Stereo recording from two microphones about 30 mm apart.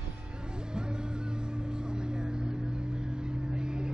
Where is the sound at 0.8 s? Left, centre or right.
Right.